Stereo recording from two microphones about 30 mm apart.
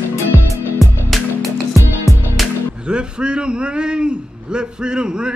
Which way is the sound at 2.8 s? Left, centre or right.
Right.